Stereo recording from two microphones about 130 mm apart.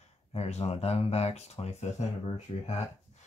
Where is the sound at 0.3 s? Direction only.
55° left (ahead or behind).